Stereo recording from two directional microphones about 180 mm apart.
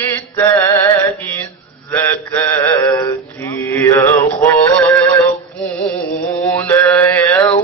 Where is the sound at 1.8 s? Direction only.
10° left (ahead or behind).